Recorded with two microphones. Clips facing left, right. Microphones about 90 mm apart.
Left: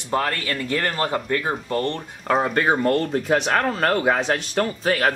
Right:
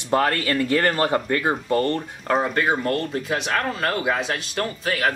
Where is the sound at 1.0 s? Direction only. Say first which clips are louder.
Right 2 dB; 25° right (ahead or behind).